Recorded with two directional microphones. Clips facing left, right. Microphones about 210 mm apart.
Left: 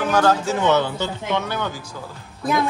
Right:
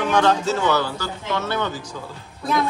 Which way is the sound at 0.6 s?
20° left (ahead or behind).